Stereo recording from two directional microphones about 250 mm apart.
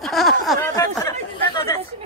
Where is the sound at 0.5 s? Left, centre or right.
Centre.